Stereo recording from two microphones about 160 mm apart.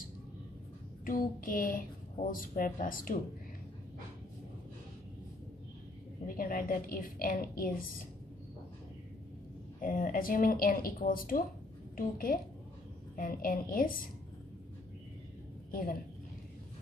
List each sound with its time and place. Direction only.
1.0 s speech: 60° left (ahead or behind)
6.2 s speech: 60° left (ahead or behind)
9.8 s speech: 60° left (ahead or behind)
13.1 s speech: 60° left (ahead or behind)
15.7 s a woman's voice: 60° left (ahead or behind)